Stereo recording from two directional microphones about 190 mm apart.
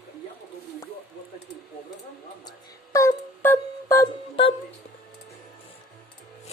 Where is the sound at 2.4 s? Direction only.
15° left (ahead or behind).